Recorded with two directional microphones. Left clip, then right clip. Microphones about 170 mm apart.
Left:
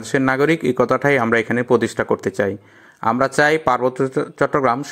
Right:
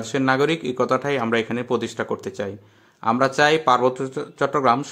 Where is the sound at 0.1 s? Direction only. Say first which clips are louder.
Left 3 dB; 30° left (ahead or behind).